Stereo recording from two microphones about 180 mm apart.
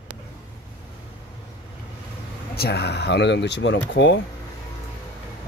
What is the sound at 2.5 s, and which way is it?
Speech, 60° left (ahead or behind).